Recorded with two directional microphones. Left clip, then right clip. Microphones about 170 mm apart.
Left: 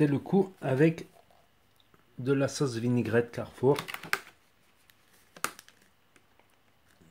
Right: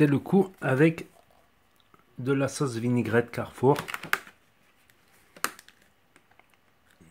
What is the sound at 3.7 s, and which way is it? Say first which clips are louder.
Speech: right 3 dB; centre (ahead or behind).